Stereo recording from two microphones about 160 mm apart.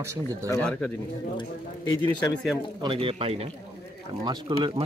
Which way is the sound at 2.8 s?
30° right (ahead or behind).